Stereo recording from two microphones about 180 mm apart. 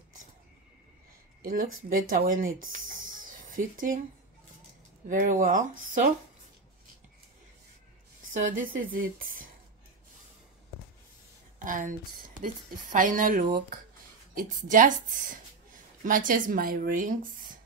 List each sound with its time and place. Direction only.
1.4 s speech: 50° right (ahead or behind)
3.3 s a sound: 50° right (ahead or behind)
5.0 s speech: 45° right (ahead or behind)
8.3 s a woman's voice: 45° right (ahead or behind)
11.6 s speech: 45° right (ahead or behind)